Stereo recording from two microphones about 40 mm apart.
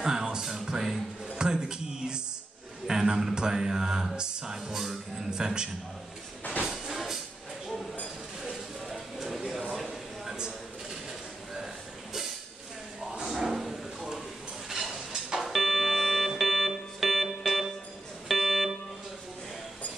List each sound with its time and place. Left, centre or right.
0.0 s music: centre
2.9 s speech: centre
4.2 s music: centre
5.3 s a man's voice: centre
6.6 s music: centre
8.8 s a sound: centre
11.5 s a sound: centre
13.3 s drawer open or close: centre
14.7 s a sound: centre
15.2 s music: centre